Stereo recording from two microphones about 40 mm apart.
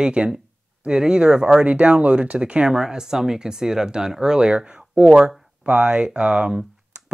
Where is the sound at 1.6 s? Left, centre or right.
Right.